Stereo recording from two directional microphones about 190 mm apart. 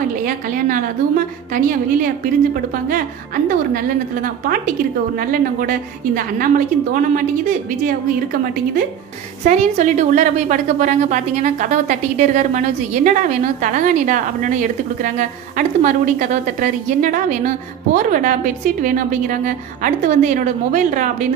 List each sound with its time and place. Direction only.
0.7 s a woman's voice: 45° right (ahead or behind)
5.3 s a woman's voice: 50° right (ahead or behind)
9.4 s a woman's voice: 40° right (ahead or behind)